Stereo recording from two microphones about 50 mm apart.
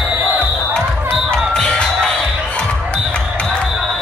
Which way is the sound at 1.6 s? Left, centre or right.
Centre.